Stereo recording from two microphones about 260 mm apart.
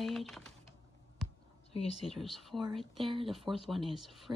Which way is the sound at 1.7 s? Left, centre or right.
Left.